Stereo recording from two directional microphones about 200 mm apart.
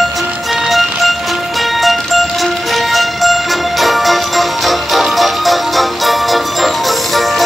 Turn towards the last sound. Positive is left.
turn(degrees=0)  # may be behind; listen again after turning